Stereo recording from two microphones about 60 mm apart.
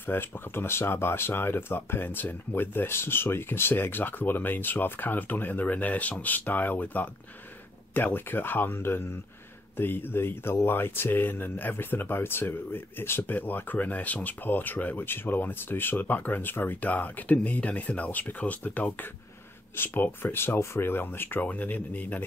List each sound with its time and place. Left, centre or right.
0.0 s speech: left